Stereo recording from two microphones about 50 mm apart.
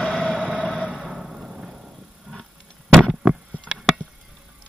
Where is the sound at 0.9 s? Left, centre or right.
Centre.